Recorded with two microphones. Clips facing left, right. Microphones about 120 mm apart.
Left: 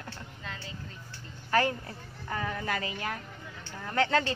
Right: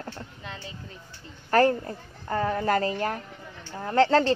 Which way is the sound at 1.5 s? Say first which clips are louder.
Right 7 dB; 40° right (ahead or behind).